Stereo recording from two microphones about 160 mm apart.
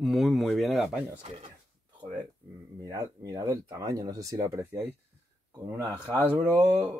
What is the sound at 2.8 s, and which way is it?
Speech, 20° right (ahead or behind).